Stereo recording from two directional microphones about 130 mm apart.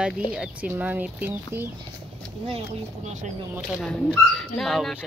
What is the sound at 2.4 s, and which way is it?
Speech, 55° right (ahead or behind).